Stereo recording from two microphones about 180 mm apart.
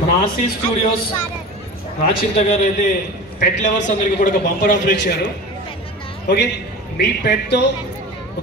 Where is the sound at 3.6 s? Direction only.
45° left (ahead or behind).